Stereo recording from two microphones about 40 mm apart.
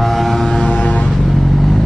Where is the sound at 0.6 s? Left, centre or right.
Left.